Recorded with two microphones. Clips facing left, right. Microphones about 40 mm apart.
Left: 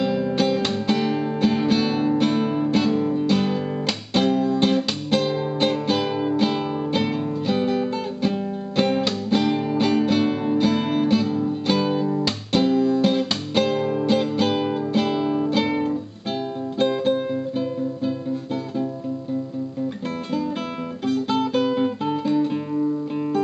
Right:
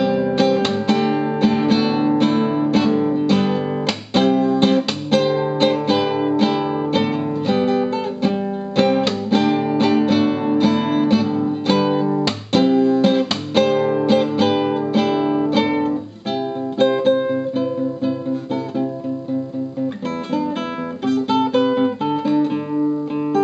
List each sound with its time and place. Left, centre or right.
0.0 s music: centre
17.0 s music: centre
21.0 s music: centre